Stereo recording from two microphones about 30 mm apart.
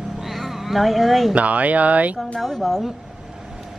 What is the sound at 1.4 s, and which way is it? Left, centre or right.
Speech, right.